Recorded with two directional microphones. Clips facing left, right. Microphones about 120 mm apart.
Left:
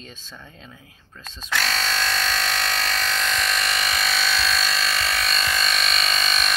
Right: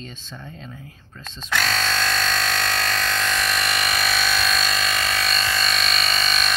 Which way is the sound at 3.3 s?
10° right (ahead or behind).